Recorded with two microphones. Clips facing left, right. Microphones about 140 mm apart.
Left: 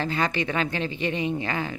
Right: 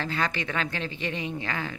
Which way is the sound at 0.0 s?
5° left (ahead or behind).